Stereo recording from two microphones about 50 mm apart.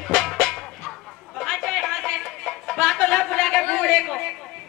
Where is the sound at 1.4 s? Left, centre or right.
Centre.